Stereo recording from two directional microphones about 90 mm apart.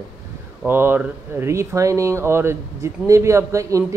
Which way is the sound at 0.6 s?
25° right (ahead or behind).